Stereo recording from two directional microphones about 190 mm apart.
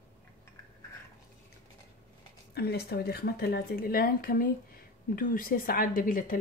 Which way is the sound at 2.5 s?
60° left (ahead or behind).